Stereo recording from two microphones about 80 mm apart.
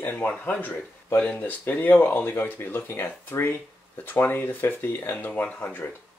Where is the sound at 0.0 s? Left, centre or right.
Left.